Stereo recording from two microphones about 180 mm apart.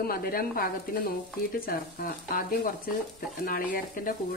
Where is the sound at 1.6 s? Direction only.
55° left (ahead or behind).